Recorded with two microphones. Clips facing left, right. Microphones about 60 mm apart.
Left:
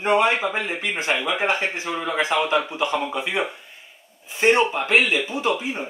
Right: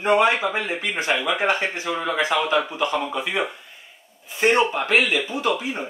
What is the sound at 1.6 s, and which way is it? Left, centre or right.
Speech, left.